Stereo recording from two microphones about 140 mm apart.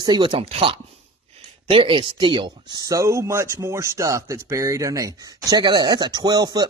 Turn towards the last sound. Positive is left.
turn(degrees=-30)  # may be behind; listen again after turning